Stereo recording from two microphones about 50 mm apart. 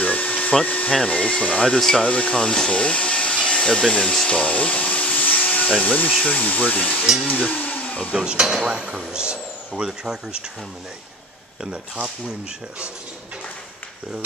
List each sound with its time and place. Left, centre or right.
0.0 s a sound: left
1.0 s speech: left
1.6 s speech: centre
4.3 s vacuum cleaner: left
5.8 s speech: left
8.1 s speech: centre